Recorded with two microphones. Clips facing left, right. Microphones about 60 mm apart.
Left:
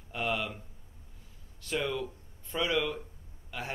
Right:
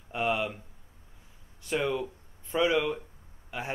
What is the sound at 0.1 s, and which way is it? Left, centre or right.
Speech, centre.